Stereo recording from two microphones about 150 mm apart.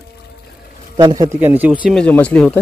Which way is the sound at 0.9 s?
25° right (ahead or behind).